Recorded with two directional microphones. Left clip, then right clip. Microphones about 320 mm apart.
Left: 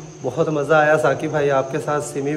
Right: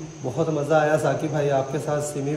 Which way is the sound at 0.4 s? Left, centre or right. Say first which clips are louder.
Left 4 dB; left.